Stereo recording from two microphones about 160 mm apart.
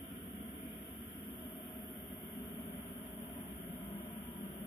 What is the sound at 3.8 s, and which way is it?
Vehicle, 15° left (ahead or behind).